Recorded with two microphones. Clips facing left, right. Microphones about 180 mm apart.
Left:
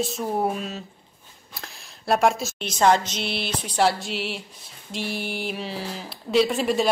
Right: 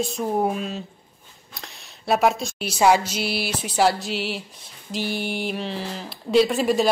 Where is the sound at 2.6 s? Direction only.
10° right (ahead or behind).